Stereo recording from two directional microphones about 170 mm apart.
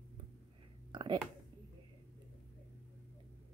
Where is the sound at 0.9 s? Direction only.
25° right (ahead or behind).